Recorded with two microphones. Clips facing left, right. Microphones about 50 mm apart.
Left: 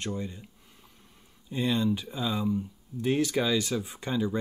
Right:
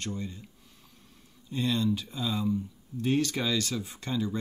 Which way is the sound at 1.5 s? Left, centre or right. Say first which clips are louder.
Left 1 dB; centre.